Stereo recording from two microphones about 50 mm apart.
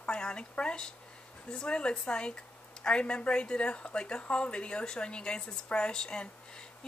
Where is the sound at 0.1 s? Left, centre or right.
Centre.